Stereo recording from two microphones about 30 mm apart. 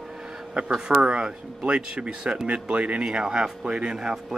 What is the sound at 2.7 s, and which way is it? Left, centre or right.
Speech, right.